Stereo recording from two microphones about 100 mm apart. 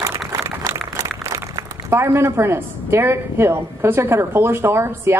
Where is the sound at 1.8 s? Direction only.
25° right (ahead or behind).